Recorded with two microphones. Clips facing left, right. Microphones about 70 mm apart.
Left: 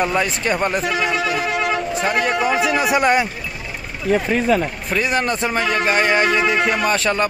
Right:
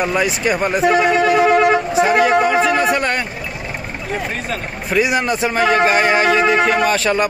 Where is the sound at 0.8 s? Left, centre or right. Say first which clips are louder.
Right 7 dB; right.